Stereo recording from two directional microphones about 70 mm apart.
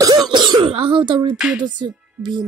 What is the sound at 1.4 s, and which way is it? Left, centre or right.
Music, centre.